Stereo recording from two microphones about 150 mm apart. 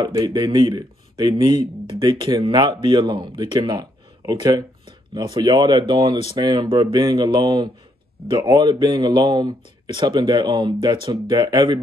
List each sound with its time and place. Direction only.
0.0 s speech: 30° right (ahead or behind)